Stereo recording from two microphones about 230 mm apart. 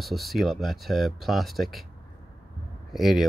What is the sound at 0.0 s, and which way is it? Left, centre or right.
Speech, centre.